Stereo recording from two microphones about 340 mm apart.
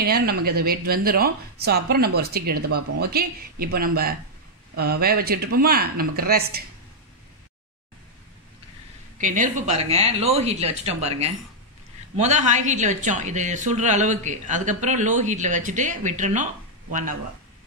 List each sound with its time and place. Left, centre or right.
0.0 s speech: right
9.2 s speech: right